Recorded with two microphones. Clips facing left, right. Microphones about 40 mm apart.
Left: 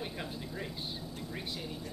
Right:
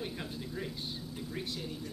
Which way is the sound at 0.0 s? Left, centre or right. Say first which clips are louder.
Even; centre.